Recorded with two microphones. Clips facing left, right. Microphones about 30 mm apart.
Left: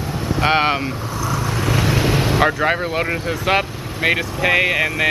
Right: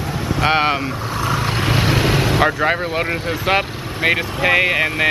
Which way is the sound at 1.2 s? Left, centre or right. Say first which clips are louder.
Right 2 dB; right.